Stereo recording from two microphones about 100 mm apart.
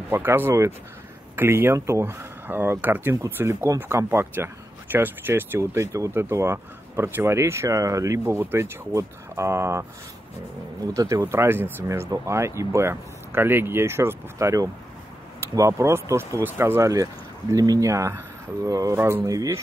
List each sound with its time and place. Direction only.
0.1 s speech: 25° right (ahead or behind)
11.0 s speech: 35° right (ahead or behind)
18.9 s speech: 25° right (ahead or behind)
19.2 s speech: 35° right (ahead or behind)